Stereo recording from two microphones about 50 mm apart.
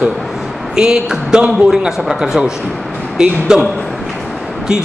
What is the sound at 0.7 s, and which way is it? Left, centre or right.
A man's voice, centre.